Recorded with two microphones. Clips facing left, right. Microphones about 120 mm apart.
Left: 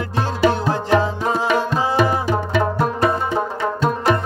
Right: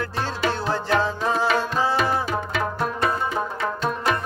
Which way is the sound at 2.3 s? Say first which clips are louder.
Left 6 dB; 30° left (ahead or behind).